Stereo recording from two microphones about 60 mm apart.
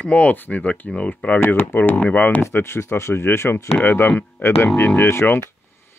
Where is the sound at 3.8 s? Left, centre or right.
Left.